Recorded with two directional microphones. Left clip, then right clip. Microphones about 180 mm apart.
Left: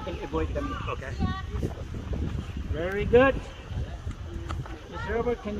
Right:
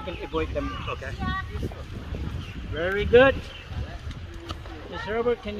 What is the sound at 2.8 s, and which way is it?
Speech, 20° left (ahead or behind).